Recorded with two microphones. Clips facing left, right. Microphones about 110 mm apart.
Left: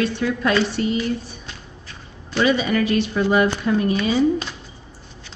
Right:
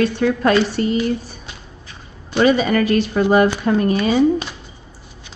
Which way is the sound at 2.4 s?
45° right (ahead or behind).